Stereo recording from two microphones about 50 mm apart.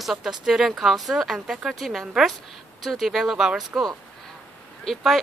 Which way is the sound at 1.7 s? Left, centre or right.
Centre.